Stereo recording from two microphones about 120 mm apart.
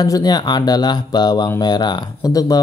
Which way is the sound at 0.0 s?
35° left (ahead or behind).